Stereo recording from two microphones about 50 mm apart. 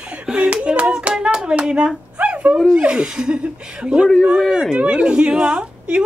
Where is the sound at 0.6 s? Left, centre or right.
Centre.